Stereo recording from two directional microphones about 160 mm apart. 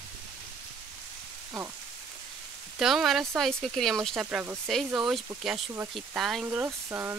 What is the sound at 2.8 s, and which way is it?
Speech, centre (ahead or behind).